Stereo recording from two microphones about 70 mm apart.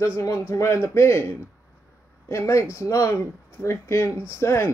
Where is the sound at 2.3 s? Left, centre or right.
Left.